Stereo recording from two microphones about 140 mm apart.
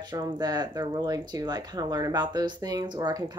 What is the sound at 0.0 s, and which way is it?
Speech, 30° right (ahead or behind).